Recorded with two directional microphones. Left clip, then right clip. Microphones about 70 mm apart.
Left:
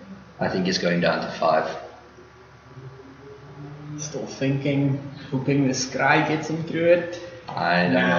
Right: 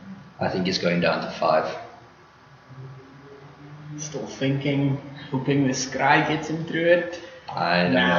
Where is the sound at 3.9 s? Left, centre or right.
Left.